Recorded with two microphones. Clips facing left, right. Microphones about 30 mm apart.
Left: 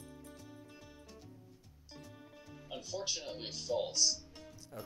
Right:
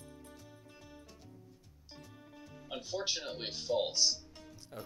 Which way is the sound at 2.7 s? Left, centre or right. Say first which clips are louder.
Right 3 dB; right.